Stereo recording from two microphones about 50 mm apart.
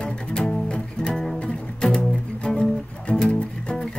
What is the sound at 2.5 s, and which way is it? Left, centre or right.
Music, centre.